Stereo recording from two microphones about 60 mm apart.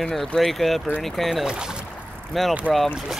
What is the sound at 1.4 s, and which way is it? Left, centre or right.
Speech, centre.